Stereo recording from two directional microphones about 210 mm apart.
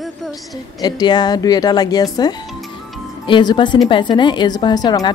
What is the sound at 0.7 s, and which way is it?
Speech, 20° left (ahead or behind).